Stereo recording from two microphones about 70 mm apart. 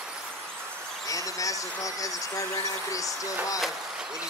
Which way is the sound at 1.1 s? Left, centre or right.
Left.